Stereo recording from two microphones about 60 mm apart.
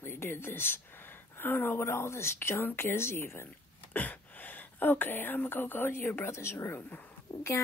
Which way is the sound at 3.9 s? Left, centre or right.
Left.